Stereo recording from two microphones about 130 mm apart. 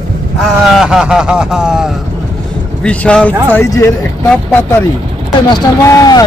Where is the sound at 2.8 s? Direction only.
10° left (ahead or behind).